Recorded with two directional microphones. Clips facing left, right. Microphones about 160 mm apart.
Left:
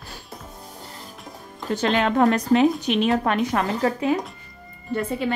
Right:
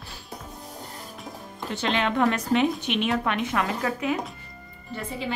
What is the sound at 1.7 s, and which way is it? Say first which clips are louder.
Speech: left 5 dB; 40° left (ahead or behind).